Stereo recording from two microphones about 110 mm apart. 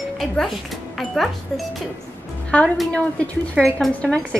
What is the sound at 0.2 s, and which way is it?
A woman's voice, centre (ahead or behind).